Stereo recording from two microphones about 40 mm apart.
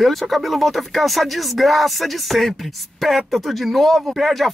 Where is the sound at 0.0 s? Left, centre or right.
Centre.